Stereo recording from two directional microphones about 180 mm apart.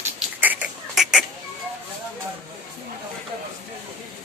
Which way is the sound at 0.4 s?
10° right (ahead or behind).